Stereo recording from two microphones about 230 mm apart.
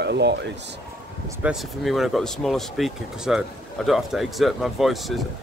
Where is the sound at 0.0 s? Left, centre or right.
Right.